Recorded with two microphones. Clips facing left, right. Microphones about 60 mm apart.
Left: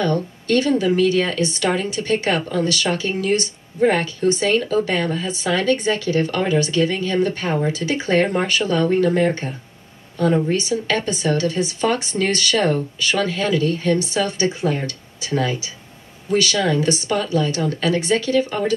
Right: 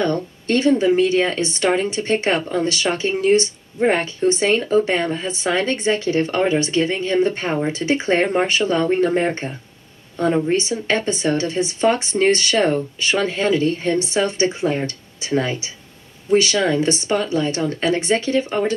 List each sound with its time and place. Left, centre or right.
0.0 s speech: right